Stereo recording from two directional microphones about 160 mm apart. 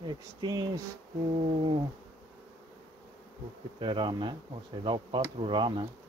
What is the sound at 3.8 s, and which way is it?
Speech, 30° right (ahead or behind).